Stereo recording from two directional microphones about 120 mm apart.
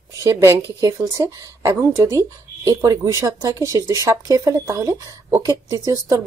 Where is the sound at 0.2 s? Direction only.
25° right (ahead or behind).